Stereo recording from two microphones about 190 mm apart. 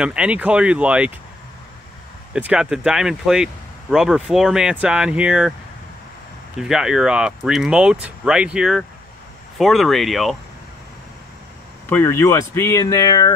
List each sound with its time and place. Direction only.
0.0 s speech: 5° right (ahead or behind)
2.3 s speech: 5° right (ahead or behind)
6.6 s speech: 5° right (ahead or behind)
11.9 s speech: 15° left (ahead or behind)